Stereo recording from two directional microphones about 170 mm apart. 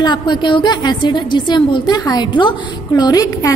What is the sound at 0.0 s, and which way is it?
A woman's voice, 25° left (ahead or behind).